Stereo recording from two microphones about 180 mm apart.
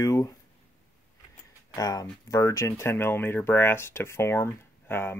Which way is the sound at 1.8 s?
20° left (ahead or behind).